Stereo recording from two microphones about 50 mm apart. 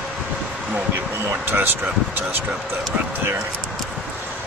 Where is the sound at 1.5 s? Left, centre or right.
Right.